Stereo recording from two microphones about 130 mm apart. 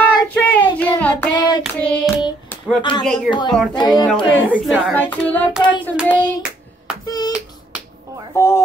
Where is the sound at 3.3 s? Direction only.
35° left (ahead or behind).